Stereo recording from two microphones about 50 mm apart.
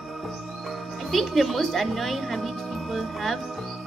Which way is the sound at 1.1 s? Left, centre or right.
Centre.